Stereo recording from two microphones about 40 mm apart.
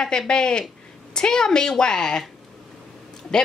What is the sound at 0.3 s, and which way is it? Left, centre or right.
A woman's voice, left.